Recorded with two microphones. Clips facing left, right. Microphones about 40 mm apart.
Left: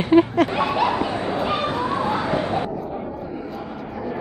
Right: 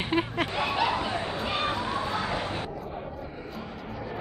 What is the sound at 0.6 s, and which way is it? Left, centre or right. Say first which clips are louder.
Bow-wow: left 6 dB; left.